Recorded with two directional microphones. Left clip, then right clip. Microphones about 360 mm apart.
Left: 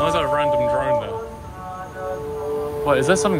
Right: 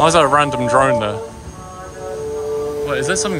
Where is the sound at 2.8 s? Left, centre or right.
Centre.